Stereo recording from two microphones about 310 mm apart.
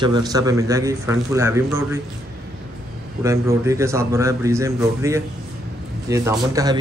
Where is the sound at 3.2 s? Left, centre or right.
Centre.